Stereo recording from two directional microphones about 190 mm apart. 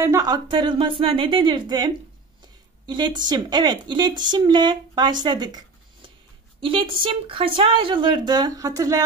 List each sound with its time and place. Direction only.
0.0 s speech: 15° right (ahead or behind)
2.9 s speech: 25° right (ahead or behind)
6.6 s speech: 25° right (ahead or behind)